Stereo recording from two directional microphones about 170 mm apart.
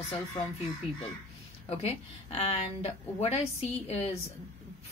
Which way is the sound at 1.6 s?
35° left (ahead or behind).